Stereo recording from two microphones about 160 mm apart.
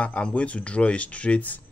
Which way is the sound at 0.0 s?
5° left (ahead or behind).